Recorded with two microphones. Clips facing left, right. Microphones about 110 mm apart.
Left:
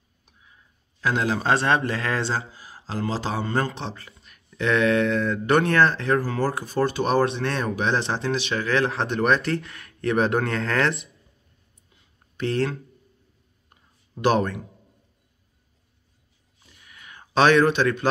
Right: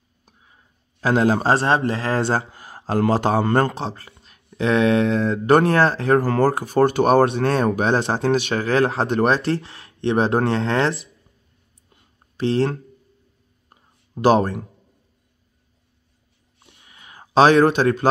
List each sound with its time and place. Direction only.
1.0 s speech: 40° right (ahead or behind)
2.2 s speech: 55° right (ahead or behind)
3.7 s speech: 40° right (ahead or behind)
6.2 s speech: 50° right (ahead or behind); by 11.0 s 30° right (ahead or behind)
11.9 s a sound: 45° right (ahead or behind)
12.4 s speech: 30° right (ahead or behind)
14.2 s speech: 40° right (ahead or behind)
16.7 s a sound: 30° right (ahead or behind)